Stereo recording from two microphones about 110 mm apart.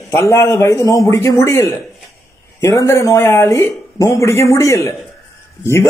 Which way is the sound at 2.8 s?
25° left (ahead or behind).